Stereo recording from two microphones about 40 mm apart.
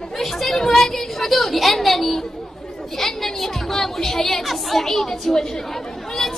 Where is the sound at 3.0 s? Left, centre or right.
Centre.